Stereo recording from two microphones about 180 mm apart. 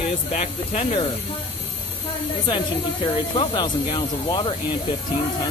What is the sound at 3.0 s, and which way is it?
Speech, 30° left (ahead or behind).